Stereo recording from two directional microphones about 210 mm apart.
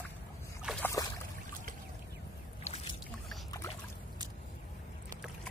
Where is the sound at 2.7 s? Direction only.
30° left (ahead or behind).